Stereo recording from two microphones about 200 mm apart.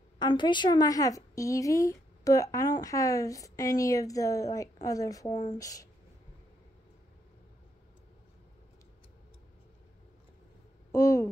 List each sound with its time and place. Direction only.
0.2 s a woman's voice: 25° left (ahead or behind)
10.9 s speech: 15° left (ahead or behind)